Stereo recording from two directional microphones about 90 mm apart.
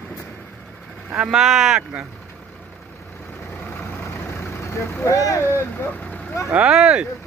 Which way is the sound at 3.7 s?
25° left (ahead or behind).